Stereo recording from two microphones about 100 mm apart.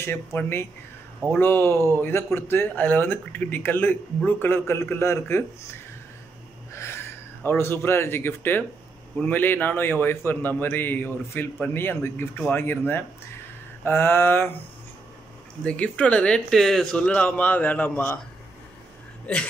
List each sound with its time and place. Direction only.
0.0 s speech: 25° left (ahead or behind)
15.6 s speech: 10° left (ahead or behind)
17.0 s speech: 15° left (ahead or behind)